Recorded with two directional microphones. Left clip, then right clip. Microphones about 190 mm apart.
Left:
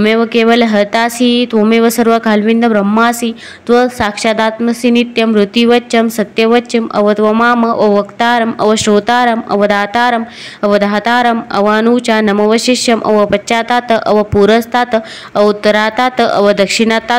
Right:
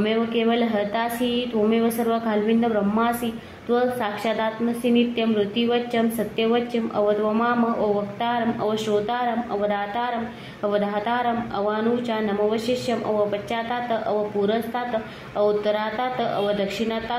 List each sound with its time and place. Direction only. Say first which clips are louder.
0.0 s speech: left 12 dB; 35° left (ahead or behind)